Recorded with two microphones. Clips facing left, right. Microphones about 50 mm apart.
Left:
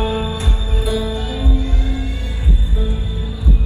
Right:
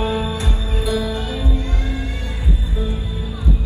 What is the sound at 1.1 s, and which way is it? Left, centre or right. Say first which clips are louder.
Music: left 1 dB; right.